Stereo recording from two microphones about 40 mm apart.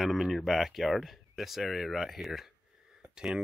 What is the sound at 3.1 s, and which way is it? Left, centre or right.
Speech, centre.